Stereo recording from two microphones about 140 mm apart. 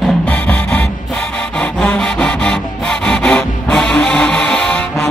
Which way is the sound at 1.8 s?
5° left (ahead or behind).